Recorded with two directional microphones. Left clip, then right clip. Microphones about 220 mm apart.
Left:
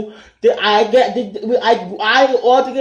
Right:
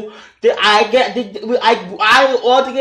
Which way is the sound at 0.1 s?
5° right (ahead or behind).